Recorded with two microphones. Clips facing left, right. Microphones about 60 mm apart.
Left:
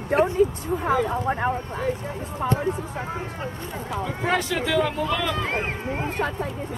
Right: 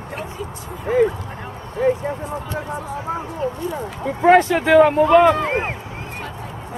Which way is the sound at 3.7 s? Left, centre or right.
Right.